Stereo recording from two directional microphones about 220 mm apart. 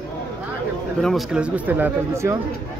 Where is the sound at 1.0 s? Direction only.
Centre (ahead or behind).